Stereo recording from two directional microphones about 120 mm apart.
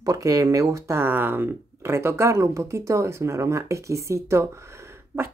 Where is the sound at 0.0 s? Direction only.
25° right (ahead or behind).